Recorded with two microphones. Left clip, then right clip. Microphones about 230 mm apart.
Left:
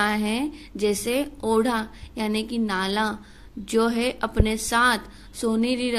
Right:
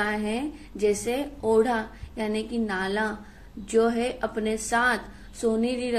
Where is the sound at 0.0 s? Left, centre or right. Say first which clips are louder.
Left 3 dB; left.